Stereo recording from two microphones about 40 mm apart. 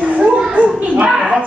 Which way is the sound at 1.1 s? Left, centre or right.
Centre.